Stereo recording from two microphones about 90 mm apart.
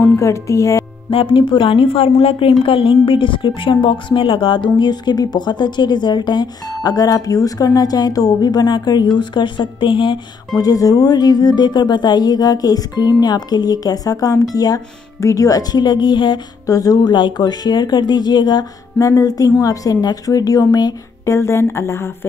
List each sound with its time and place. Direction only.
0.2 s a woman's voice: 35° left (ahead or behind)
1.1 s a woman's voice: 75° left (ahead or behind)
10.5 s speech: 45° left (ahead or behind); by 16.3 s 60° left (ahead or behind)
16.6 s speech: 40° left (ahead or behind)
17.1 s a woman's voice: 55° left (ahead or behind)
18.9 s a woman's voice: 40° left (ahead or behind)
21.3 s a woman's voice: 30° left (ahead or behind)